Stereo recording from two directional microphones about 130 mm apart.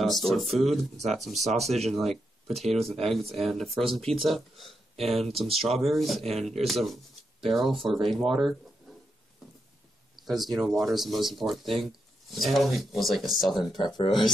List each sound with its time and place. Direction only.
0.0 s speech: centre (ahead or behind)
0.7 s speech: 60° right (ahead or behind)
1.1 s speech: centre (ahead or behind)
10.2 s speech: centre (ahead or behind)
13.6 s speech: 35° left (ahead or behind)